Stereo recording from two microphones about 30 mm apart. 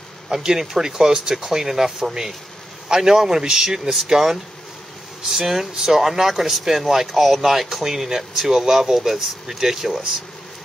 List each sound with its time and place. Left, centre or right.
0.3 s speech: centre